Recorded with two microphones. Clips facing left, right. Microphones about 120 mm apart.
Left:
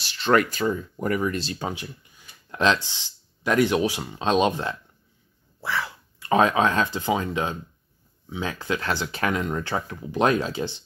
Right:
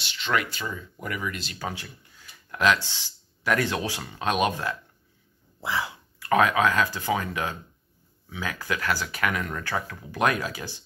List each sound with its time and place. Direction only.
0.0 s speech: 40° left (ahead or behind)
1.7 s speech: 15° left (ahead or behind)
5.6 s dog: 20° right (ahead or behind)
6.1 s speech: 25° left (ahead or behind)